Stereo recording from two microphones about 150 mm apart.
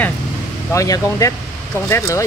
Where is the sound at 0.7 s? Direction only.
20° left (ahead or behind).